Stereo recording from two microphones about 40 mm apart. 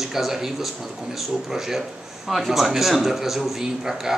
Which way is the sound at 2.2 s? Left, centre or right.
Centre.